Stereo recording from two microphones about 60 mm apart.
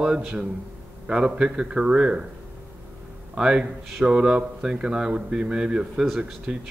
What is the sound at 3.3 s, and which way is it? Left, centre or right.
A man's voice, centre.